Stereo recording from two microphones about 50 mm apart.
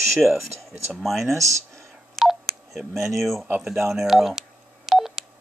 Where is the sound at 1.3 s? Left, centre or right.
Right.